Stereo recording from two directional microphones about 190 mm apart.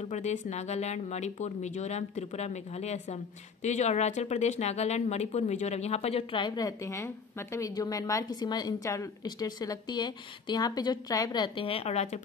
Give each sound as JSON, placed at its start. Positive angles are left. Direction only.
{"t": 0.1, "sound": "a woman's voice", "side_deg": 35}